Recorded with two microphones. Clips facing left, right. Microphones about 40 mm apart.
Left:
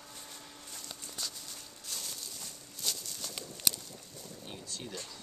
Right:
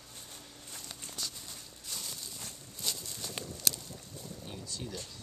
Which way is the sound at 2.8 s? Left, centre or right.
Centre.